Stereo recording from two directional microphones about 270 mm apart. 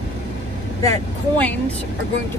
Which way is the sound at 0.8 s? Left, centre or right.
Centre.